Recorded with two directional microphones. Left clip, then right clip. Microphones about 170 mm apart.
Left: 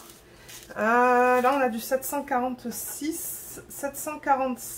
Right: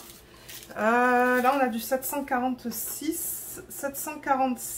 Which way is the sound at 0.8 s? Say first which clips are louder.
Left 2 dB; 20° left (ahead or behind).